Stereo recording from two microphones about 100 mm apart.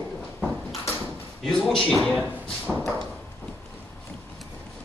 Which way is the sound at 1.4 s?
5° left (ahead or behind).